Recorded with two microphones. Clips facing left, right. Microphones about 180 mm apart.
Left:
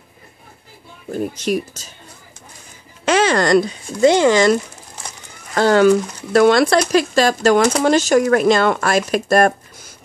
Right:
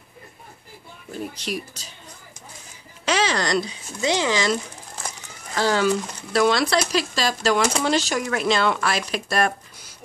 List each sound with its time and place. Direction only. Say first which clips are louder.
1.1 s speech: left 9 dB; 45° left (ahead or behind)
3.1 s speech: left 8 dB; 50° left (ahead or behind)